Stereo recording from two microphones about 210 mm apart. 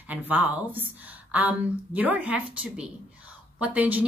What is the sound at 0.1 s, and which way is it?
A woman's voice, 10° right (ahead or behind).